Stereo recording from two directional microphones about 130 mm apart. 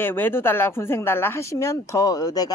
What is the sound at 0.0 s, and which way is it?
A woman's voice, 15° left (ahead or behind).